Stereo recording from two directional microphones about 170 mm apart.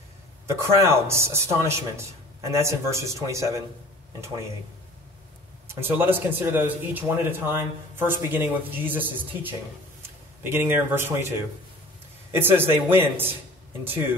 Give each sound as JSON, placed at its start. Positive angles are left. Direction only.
{"t": 0.6, "sound": "a man's voice", "side_deg": -15}
{"t": 5.7, "sound": "a man's voice", "side_deg": -15}
{"t": 12.4, "sound": "a man's voice", "side_deg": -10}